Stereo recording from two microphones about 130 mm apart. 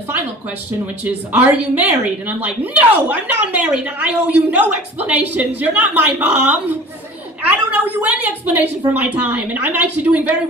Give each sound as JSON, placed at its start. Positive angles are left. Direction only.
{"t": 1.0, "sound": "a woman's voice", "side_deg": -10}